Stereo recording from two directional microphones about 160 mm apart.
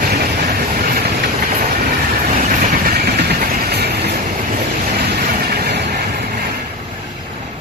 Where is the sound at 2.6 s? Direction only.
75° right (ahead or behind); by 4.1 s 90° right.